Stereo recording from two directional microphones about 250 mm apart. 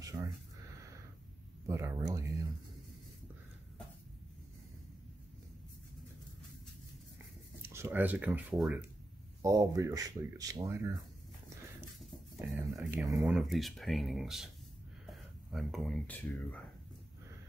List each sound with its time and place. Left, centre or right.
1.7 s speech: centre
7.6 s speech: centre
12.4 s speech: centre